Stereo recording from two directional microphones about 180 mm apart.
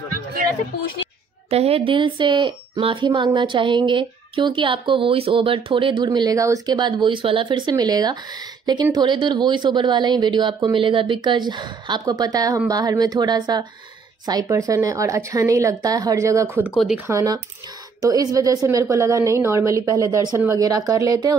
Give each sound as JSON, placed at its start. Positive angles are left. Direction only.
{"t": 1.5, "sound": "a woman's voice", "side_deg": -35}
{"t": 17.1, "sound": "a woman's voice", "side_deg": -20}